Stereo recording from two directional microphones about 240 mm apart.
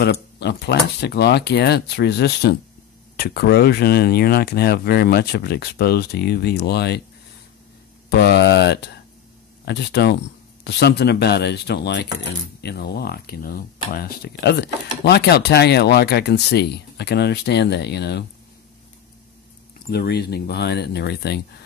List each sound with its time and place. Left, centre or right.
0.0 s speech: left
8.1 s speech: left
19.9 s speech: left